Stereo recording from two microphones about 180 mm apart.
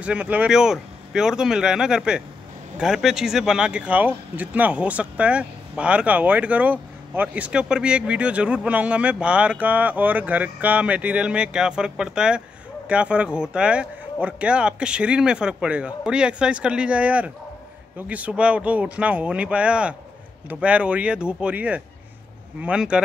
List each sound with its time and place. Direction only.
0.0 s speech: 5° right (ahead or behind)